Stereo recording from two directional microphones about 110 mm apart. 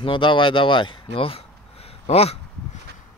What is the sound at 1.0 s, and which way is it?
Speech, 60° left (ahead or behind).